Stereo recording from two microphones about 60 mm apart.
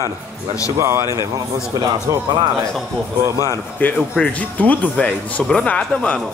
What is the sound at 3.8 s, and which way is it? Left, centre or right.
Speech, left.